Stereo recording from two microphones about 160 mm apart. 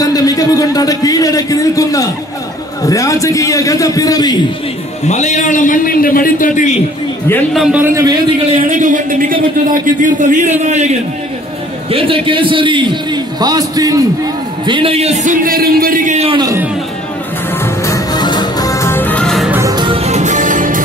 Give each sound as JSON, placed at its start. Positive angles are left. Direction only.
{"t": 0.0, "sound": "a man's voice", "side_deg": 20}
{"t": 5.0, "sound": "a man's voice", "side_deg": 45}
{"t": 7.5, "sound": "a man's voice", "side_deg": 0}
{"t": 7.8, "sound": "a man's voice", "side_deg": -20}
{"t": 8.5, "sound": "a man's voice", "side_deg": -55}
{"t": 11.9, "sound": "a man's voice", "side_deg": -35}
{"t": 16.2, "sound": "a man's voice", "side_deg": -35}
{"t": 17.6, "sound": "music", "side_deg": 20}
{"t": 19.5, "sound": "music", "side_deg": -20}